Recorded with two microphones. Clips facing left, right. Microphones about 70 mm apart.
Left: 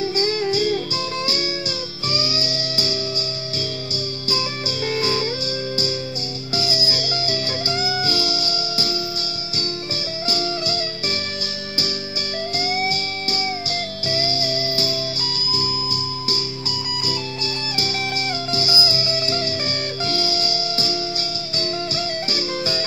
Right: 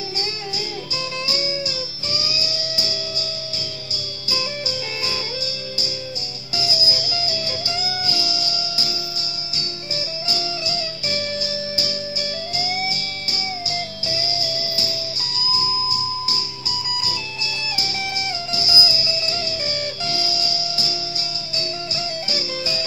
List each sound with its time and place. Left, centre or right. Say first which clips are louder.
0.0 s music: left 8 dB; left
2.1 s music: left 3 dB; left
6.5 s music: left 1 dB; left
10.2 s music: left 6 dB; left
12.5 s music: left 4 dB; left
18.5 s music: left 1 dB; left